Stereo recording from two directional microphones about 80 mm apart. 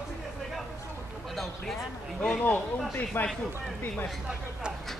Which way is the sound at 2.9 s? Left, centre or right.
Left.